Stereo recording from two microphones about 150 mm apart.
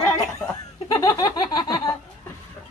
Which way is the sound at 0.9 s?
25° left (ahead or behind).